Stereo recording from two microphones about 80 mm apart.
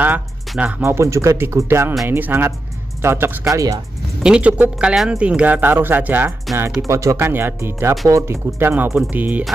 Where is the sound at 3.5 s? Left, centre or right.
Right.